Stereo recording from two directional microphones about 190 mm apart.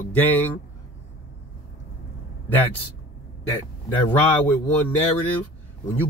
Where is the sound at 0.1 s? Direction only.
10° left (ahead or behind).